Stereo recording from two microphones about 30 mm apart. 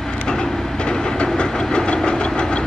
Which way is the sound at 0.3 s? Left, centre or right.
Left.